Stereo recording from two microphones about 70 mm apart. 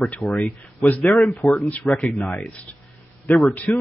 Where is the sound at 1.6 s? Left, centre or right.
Left.